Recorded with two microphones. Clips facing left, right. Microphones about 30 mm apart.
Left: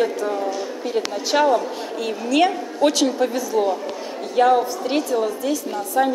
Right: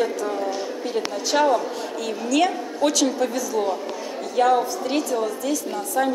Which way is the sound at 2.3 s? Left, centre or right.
Centre.